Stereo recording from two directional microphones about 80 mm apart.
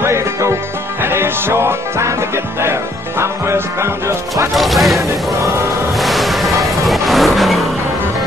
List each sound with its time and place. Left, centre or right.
0.0 s music: right
3.2 s music: right
4.6 s speech: centre
5.9 s vehicle: centre